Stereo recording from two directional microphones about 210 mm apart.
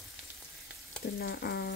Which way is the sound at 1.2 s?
50° left (ahead or behind).